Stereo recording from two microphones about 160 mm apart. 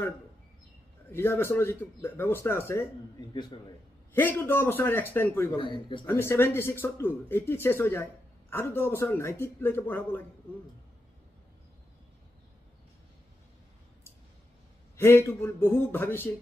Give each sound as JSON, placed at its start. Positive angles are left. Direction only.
{"t": 1.1, "sound": "speech", "side_deg": 15}
{"t": 4.1, "sound": "speech", "side_deg": 10}
{"t": 5.6, "sound": "speech", "side_deg": 30}
{"t": 6.0, "sound": "speech", "side_deg": 15}
{"t": 15.0, "sound": "speech", "side_deg": 15}